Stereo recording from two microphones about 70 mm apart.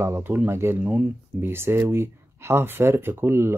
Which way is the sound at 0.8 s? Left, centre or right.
Right.